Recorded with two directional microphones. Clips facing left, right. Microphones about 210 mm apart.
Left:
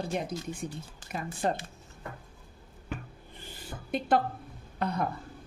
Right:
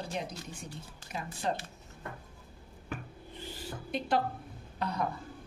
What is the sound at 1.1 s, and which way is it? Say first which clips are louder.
Speech: left 4 dB; 55° left (ahead or behind).